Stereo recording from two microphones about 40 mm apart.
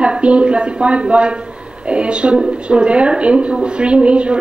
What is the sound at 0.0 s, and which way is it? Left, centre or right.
A woman's voice, right.